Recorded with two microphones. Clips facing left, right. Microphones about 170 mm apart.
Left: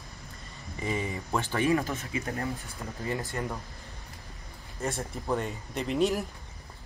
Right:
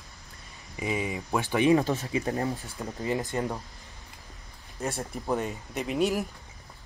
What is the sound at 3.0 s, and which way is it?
Speech, 20° right (ahead or behind).